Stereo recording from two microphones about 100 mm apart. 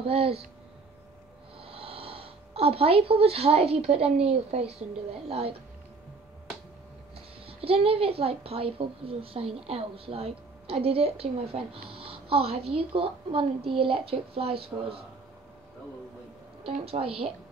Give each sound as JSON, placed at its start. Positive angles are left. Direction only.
{"t": 0.0, "sound": "a woman's voice", "side_deg": -80}
{"t": 1.6, "sound": "a woman's voice", "side_deg": -75}
{"t": 7.4, "sound": "a woman's voice", "side_deg": -70}
{"t": 16.6, "sound": "a woman's voice", "side_deg": -65}